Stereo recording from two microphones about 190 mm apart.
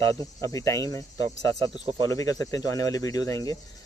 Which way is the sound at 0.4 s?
15° left (ahead or behind).